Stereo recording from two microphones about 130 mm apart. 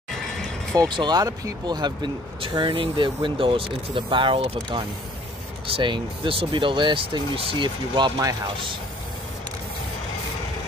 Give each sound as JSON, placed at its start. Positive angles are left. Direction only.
{"t": 0.7, "sound": "speech", "side_deg": -35}